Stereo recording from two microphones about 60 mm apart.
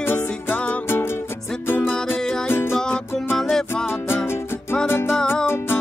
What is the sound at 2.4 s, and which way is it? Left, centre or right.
Music, left.